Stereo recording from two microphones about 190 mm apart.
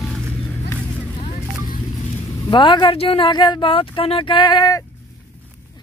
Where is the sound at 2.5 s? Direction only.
25° left (ahead or behind).